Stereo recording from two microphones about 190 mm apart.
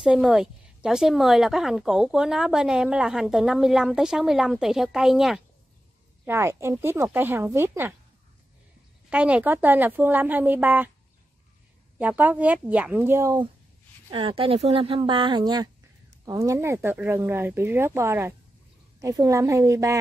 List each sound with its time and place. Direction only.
0.0 s a woman's voice: centre (ahead or behind)
6.2 s speech: 15° right (ahead or behind)
9.1 s speech: 5° right (ahead or behind)
12.0 s speech: 10° right (ahead or behind)